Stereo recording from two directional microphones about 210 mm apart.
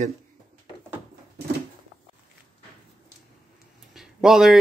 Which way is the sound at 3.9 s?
Centre (ahead or behind).